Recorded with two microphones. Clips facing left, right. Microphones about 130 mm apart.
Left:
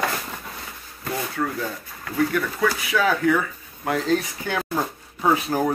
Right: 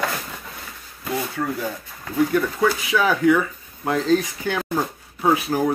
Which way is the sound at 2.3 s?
20° right (ahead or behind).